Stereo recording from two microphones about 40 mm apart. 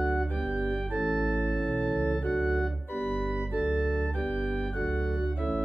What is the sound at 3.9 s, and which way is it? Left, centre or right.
Organ, left.